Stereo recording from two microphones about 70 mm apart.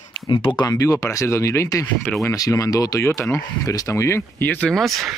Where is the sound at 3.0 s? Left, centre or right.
Left.